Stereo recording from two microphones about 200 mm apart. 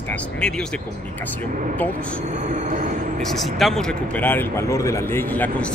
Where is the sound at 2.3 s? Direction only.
35° right (ahead or behind).